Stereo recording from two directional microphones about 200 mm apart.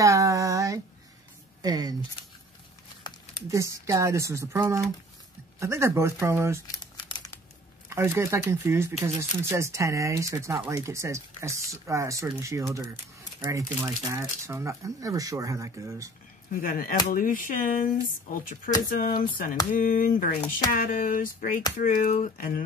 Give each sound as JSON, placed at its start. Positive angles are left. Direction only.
{"t": 0.0, "sound": "a sound", "side_deg": -15}
{"t": 1.6, "sound": "speech", "side_deg": -20}
{"t": 3.4, "sound": "speech", "side_deg": -15}
{"t": 6.7, "sound": "crumpling", "side_deg": 20}
{"t": 7.9, "sound": "speech", "side_deg": -10}
{"t": 16.6, "sound": "speech", "side_deg": 45}